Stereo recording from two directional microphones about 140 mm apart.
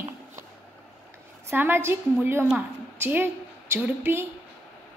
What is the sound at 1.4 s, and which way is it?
A woman's voice, 15° right (ahead or behind).